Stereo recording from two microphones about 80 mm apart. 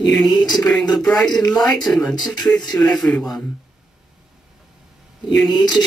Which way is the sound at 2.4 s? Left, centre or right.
Left.